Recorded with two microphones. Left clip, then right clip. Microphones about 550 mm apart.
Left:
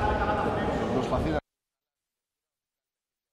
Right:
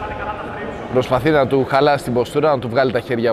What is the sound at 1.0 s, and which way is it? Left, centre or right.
Speech, right.